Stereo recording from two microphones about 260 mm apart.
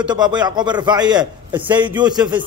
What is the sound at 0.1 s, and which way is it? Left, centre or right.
A man's voice, centre.